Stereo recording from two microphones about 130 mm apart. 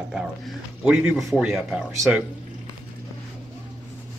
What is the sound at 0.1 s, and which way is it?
Speech, 5° right (ahead or behind).